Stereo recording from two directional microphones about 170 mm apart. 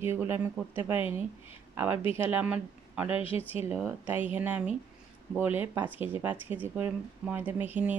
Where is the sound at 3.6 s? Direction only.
10° right (ahead or behind).